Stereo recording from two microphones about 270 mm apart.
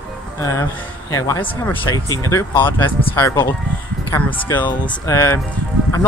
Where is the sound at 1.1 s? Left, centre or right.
Centre.